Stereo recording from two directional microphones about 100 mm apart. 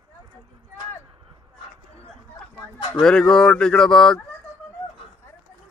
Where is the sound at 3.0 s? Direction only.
10° left (ahead or behind).